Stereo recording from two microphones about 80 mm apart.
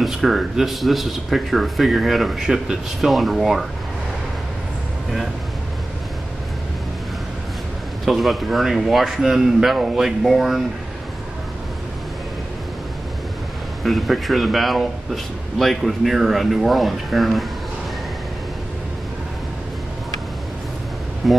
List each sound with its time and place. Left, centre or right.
0.0 s speech: centre
8.0 s speech: centre
13.8 s speech: centre
21.2 s speech: centre